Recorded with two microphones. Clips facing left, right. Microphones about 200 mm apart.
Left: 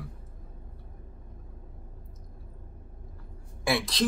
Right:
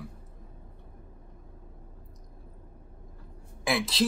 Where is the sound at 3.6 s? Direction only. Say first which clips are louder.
Even; centre (ahead or behind).